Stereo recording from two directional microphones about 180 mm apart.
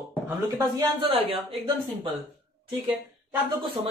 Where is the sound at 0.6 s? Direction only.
30° right (ahead or behind).